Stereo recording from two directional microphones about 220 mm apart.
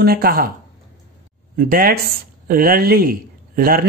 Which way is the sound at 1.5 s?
40° right (ahead or behind).